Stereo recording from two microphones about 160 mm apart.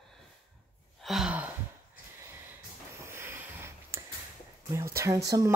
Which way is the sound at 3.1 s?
15° right (ahead or behind).